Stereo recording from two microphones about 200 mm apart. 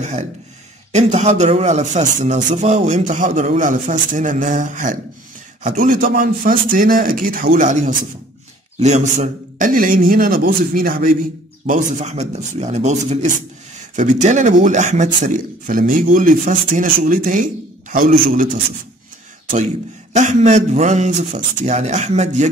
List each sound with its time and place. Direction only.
0.9 s a man's voice: 35° right (ahead or behind)
19.5 s a man's voice: 35° right (ahead or behind)